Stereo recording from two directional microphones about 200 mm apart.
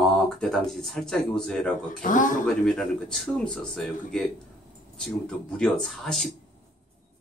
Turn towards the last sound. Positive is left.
turn(degrees=0)  # may be behind; listen again after turning